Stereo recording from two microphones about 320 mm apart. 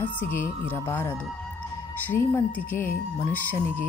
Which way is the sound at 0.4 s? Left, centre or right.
Centre.